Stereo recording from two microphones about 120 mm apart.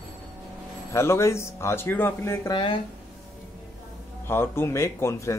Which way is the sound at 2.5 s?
45° left (ahead or behind).